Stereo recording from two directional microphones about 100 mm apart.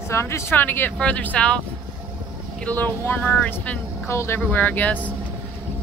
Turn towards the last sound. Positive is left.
turn(degrees=15)  # may be behind; listen again after turning